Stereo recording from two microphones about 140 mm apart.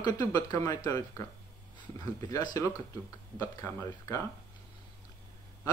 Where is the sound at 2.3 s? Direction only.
25° left (ahead or behind).